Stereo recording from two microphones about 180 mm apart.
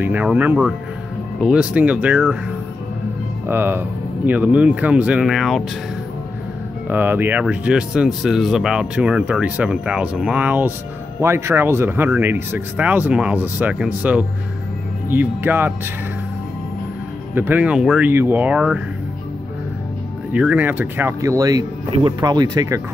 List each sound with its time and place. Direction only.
0.0 s speech: 10° right (ahead or behind)
3.4 s speech: 10° right (ahead or behind)
6.9 s speech: 10° right (ahead or behind)
15.0 s speech: 10° right (ahead or behind)
17.3 s speech: 10° right (ahead or behind)
20.3 s speech: 10° right (ahead or behind)